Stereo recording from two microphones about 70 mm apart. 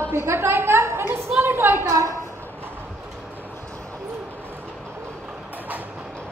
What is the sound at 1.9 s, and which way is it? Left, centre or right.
Speech, right.